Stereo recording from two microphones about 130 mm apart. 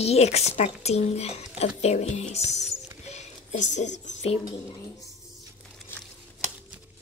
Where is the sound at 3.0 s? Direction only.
60° left (ahead or behind).